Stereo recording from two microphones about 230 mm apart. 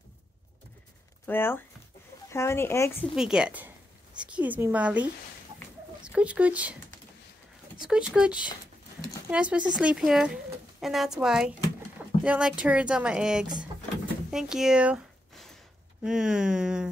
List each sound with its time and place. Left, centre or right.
1.2 s speech: centre
3.2 s a woman's voice: centre
6.1 s speech: centre
7.8 s speech: centre
14.3 s a sound: centre
16.0 s speech: centre